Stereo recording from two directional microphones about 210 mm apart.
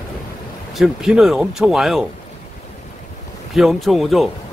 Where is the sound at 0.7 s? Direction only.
Centre (ahead or behind).